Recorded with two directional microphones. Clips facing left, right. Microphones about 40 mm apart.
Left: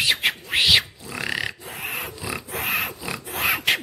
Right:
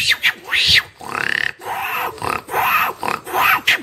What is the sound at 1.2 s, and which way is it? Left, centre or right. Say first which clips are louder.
Grunt: right 8 dB; right.